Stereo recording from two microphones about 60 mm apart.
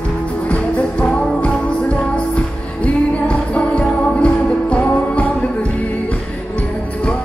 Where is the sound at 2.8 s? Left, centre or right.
Left.